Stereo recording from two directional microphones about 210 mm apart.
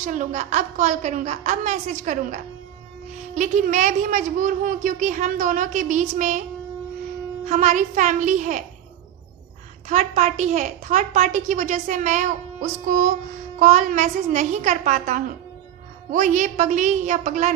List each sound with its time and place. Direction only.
0.0 s a woman's voice: 35° right (ahead or behind)
7.4 s a woman's voice: 35° right (ahead or behind)
9.8 s a woman's voice: 35° right (ahead or behind)